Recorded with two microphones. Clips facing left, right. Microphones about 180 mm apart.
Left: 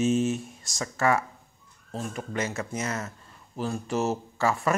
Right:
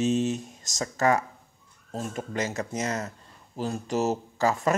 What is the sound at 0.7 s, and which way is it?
Speech, 40° right (ahead or behind).